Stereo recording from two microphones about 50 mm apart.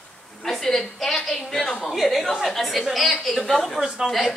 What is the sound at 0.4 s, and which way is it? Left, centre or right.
A woman's voice, centre.